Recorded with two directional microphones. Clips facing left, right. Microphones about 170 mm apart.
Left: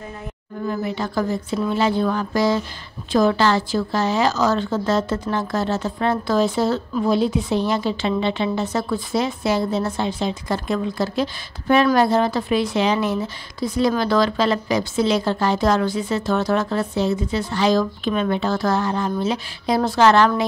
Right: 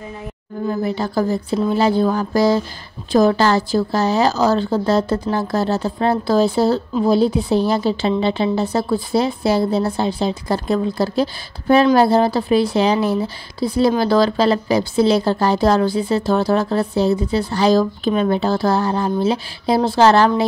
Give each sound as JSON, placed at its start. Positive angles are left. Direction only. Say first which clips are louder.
{"t": 0.7, "sound": "speech", "louder": "right 3 dB", "side_deg": -35}